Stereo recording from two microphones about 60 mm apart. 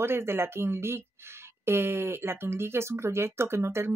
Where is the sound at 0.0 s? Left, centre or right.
Right.